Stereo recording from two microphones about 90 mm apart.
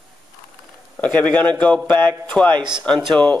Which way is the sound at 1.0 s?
15° left (ahead or behind).